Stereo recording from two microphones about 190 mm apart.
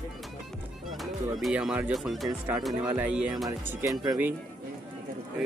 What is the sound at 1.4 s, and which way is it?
Speech, centre (ahead or behind).